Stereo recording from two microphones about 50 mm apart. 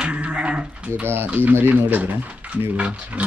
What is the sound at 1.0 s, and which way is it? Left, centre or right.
Speech, right.